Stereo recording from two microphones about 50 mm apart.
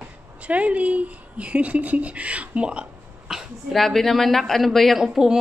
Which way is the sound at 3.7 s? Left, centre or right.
Centre.